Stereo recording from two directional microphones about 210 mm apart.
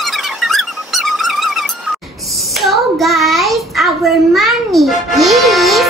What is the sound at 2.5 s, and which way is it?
Child singing, centre (ahead or behind).